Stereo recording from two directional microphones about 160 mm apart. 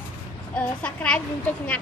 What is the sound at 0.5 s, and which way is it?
A woman's voice, 10° left (ahead or behind).